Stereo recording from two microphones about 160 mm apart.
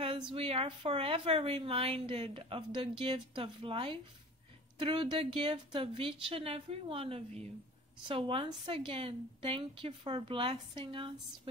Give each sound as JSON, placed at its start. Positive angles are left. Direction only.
{"t": 0.0, "sound": "a woman's voice", "side_deg": -35}